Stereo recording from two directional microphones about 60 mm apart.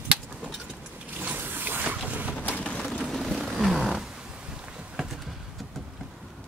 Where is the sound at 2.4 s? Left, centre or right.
Left.